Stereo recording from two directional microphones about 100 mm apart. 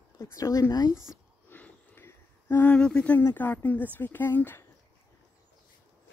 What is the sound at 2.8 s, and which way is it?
Speech, 10° left (ahead or behind).